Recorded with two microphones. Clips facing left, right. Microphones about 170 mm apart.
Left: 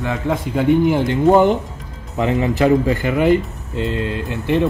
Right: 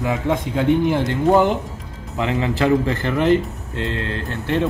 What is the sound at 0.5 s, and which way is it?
Speech, 15° left (ahead or behind).